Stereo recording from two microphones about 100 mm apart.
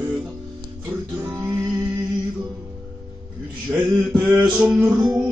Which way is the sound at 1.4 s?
25° right (ahead or behind).